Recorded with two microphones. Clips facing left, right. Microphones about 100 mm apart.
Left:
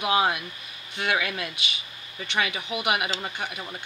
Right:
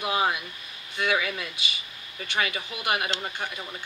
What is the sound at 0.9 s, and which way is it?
Speech, 65° left (ahead or behind).